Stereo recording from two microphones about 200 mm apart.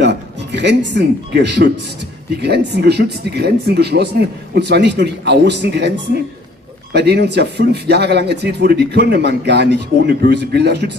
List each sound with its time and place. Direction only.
0.0 s speech: 60° right (ahead or behind)